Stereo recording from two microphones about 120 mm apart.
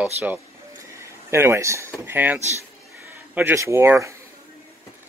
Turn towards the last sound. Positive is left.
turn(degrees=-25)  # may be behind; listen again after turning